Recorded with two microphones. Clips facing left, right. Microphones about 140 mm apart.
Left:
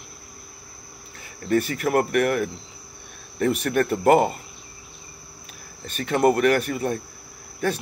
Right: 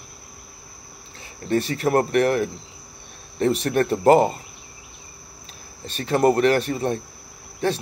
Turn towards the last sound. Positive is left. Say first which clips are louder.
# right 2 dB
turn(degrees=-25)  # may be behind; listen again after turning